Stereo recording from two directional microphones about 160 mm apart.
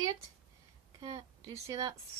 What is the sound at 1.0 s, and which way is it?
Speech, 25° right (ahead or behind).